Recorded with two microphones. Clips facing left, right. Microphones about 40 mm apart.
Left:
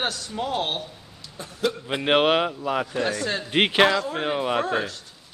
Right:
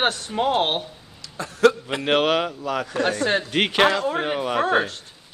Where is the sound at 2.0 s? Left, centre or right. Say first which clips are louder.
Left 1 dB; centre.